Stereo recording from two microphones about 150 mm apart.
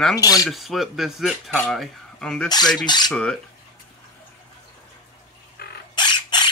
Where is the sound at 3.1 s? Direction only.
5° left (ahead or behind).